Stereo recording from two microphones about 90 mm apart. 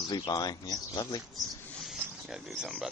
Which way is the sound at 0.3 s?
50° left (ahead or behind).